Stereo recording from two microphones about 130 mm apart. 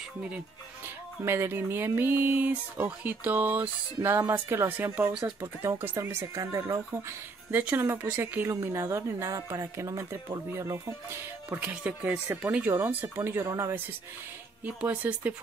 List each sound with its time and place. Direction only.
0.8 s music: 20° right (ahead or behind)
5.4 s speech: 20° right (ahead or behind)
14.6 s music: 10° right (ahead or behind)